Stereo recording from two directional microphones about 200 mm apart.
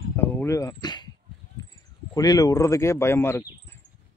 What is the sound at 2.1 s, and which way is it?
Speech, 20° left (ahead or behind).